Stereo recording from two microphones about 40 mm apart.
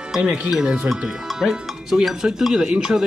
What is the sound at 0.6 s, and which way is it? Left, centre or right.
Speech, right.